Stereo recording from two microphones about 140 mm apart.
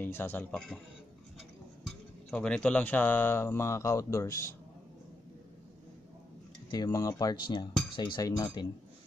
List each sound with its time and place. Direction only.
0.0 s speech: 15° left (ahead or behind)
1.9 s speech: 5° left (ahead or behind)
6.7 s speech: 25° left (ahead or behind)